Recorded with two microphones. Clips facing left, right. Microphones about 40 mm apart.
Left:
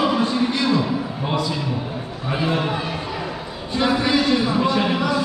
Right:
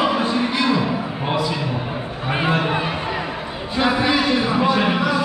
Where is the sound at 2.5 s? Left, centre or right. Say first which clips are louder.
Right 3 dB; right.